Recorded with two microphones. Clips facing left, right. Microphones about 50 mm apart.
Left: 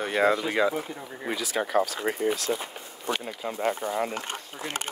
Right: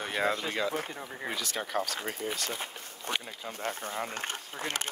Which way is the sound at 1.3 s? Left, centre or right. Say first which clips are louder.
Left 7 dB; centre.